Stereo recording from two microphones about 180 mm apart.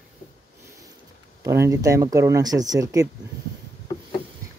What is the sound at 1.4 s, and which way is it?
Speech, 15° right (ahead or behind).